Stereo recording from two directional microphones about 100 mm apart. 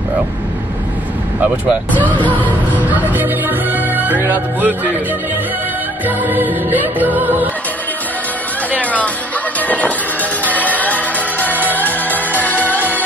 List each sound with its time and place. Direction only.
1.4 s music: 15° right (ahead or behind)
2.1 s music: 15° left (ahead or behind)
2.4 s music: 15° right (ahead or behind)
6.0 s music: 20° right (ahead or behind)
8.7 s music: 15° left (ahead or behind)
12.5 s music: 15° right (ahead or behind)